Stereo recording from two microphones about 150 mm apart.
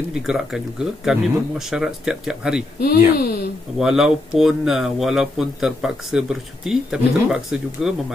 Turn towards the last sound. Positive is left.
turn(degrees=-5)  # may be behind; listen again after turning